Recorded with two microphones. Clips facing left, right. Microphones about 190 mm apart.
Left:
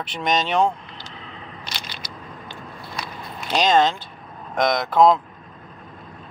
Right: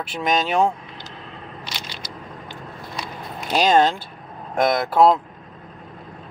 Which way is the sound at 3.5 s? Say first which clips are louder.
Right 1 dB; 10° right (ahead or behind).